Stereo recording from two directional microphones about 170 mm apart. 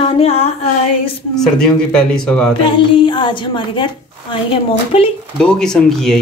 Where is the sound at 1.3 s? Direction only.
5° left (ahead or behind).